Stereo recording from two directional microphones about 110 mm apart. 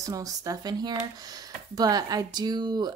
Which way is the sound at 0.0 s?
35° right (ahead or behind).